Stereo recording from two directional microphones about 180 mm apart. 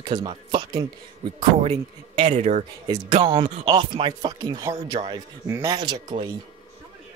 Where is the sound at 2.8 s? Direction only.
25° right (ahead or behind).